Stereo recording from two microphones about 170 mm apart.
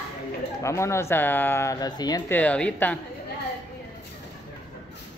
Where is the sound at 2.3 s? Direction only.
10° left (ahead or behind).